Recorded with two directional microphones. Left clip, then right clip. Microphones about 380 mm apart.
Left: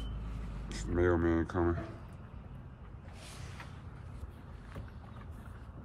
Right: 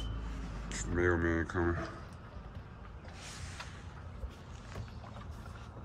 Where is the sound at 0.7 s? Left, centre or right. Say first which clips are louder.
Left 1 dB; centre.